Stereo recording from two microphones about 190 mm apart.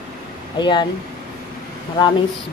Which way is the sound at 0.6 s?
25° left (ahead or behind).